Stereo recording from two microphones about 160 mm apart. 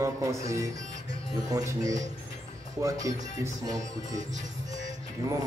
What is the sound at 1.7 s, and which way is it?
Speech, 20° right (ahead or behind).